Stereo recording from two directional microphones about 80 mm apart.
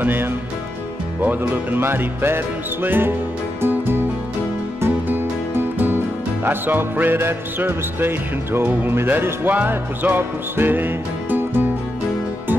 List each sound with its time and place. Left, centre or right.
0.0 s speech: right
1.2 s music: right